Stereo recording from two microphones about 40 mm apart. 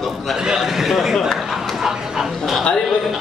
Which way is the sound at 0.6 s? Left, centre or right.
Centre.